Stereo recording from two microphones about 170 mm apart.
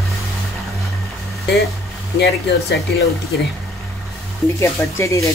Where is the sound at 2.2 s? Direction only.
75° left (ahead or behind).